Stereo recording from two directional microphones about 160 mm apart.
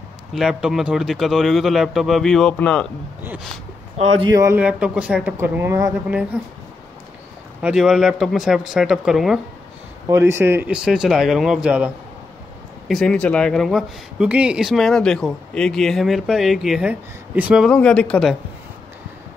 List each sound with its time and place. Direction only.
0.3 s speech: 5° right (ahead or behind)
4.2 s speech: 20° right (ahead or behind)
4.6 s a woman's voice: 5° right (ahead or behind)
7.6 s speech: 5° right (ahead or behind)
10.0 s a woman's voice: 15° right (ahead or behind)
17.6 s speech: 5° left (ahead or behind)